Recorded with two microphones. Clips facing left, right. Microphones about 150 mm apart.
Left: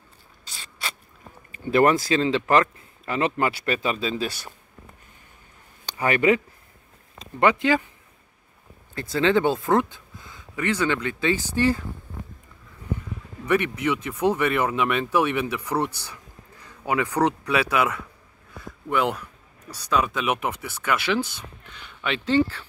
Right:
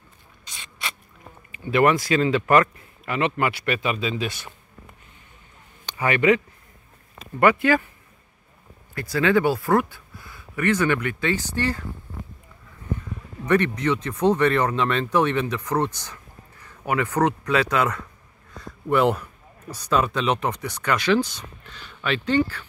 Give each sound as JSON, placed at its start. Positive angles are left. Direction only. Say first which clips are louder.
{"t": 0.5, "sound": "mechanisms", "louder": "even", "side_deg": 35}
{"t": 1.5, "sound": "speech", "louder": "even", "side_deg": 35}
{"t": 5.9, "sound": "speech", "louder": "right 1 dB", "side_deg": 40}
{"t": 7.3, "sound": "speech", "louder": "right 2 dB", "side_deg": 20}
{"t": 8.9, "sound": "speech", "louder": "right 1 dB", "side_deg": 25}
{"t": 13.5, "sound": "speech", "louder": "right 2 dB", "side_deg": 10}
{"t": 19.7, "sound": "speech", "louder": "right 2 dB", "side_deg": 0}
{"t": 21.7, "sound": "speech", "louder": "right 2 dB", "side_deg": 20}